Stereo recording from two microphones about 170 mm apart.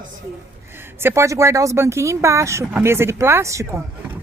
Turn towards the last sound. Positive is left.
turn(degrees=-15)  # may be behind; listen again after turning